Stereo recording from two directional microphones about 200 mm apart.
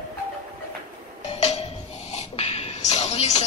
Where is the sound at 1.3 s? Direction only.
30° left (ahead or behind).